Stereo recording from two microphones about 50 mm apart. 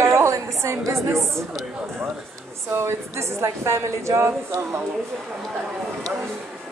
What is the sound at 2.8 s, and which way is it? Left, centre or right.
A woman's voice, right.